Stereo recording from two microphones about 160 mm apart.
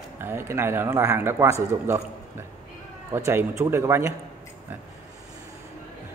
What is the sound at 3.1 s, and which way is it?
A man's voice, 15° right (ahead or behind).